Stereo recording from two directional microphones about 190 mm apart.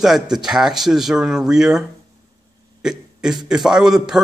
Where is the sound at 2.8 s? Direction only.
Centre (ahead or behind).